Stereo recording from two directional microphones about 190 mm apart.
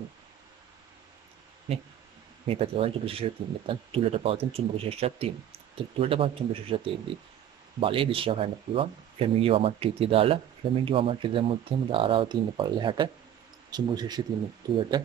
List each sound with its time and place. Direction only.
2.4 s speech: 30° right (ahead or behind)